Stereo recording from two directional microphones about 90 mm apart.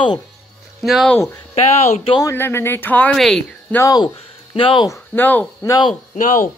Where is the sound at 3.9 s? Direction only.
70° left (ahead or behind).